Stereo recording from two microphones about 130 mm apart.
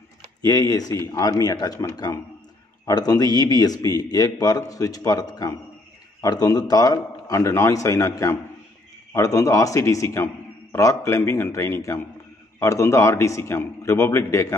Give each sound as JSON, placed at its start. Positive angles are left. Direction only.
{"t": 0.4, "sound": "a man's voice", "side_deg": 25}